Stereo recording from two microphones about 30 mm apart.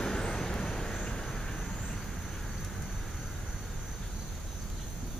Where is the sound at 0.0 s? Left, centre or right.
Left.